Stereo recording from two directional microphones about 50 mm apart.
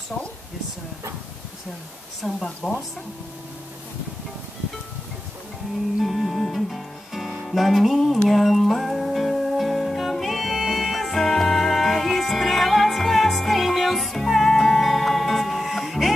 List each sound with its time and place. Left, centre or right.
0.1 s speech: centre
2.2 s speech: centre
5.9 s music: centre